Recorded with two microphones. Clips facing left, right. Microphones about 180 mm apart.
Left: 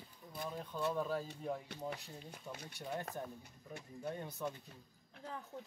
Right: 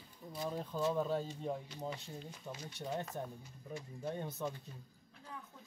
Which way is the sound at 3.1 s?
60° left (ahead or behind).